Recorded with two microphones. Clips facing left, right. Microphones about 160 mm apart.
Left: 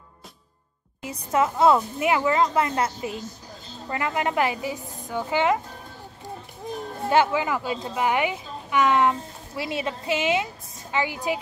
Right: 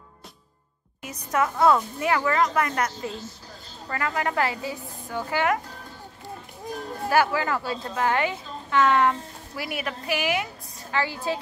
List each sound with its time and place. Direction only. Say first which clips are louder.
1.0 s a woman's voice: left 2 dB; 25° left (ahead or behind)
7.1 s a woman's voice: left 1 dB; 20° left (ahead or behind)